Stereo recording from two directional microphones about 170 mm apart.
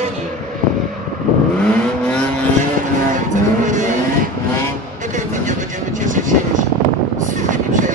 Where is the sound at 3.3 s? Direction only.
50° right (ahead or behind).